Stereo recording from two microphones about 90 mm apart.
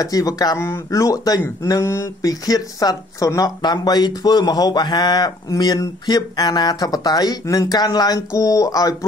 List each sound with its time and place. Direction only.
0.0 s speech: 45° left (ahead or behind)
0.6 s speech: 30° left (ahead or behind)